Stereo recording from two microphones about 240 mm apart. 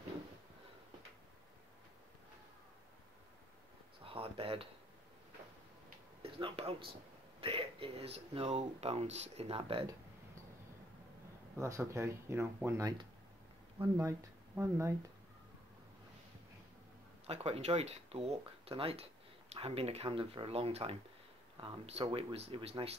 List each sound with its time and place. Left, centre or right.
4.0 s a sound: right
6.2 s speech: right
11.6 s speech: centre
17.3 s speech: right